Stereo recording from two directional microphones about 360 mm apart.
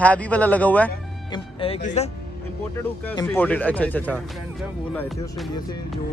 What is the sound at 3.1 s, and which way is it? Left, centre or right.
Speech, centre.